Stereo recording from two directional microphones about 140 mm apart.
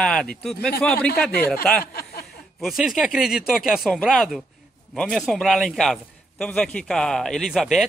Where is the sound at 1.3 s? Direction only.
90° left.